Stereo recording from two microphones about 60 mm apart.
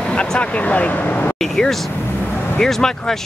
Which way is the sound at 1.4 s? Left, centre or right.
Centre.